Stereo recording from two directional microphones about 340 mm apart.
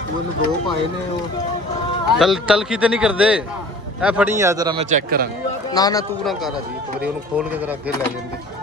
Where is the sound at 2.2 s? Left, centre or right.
Centre; by 5.2 s right.